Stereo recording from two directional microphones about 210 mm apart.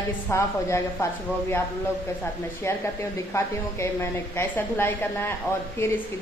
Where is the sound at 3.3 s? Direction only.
10° left (ahead or behind).